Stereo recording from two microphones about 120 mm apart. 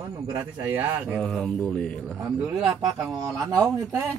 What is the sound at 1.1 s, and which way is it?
Speech, 5° left (ahead or behind).